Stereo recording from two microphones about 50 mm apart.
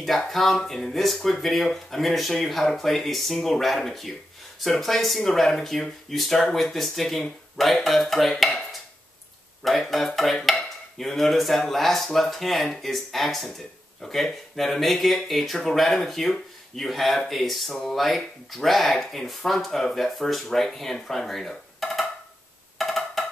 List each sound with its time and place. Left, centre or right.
0.3 s speech: centre
9.6 s speech: centre
22.8 s wood block: centre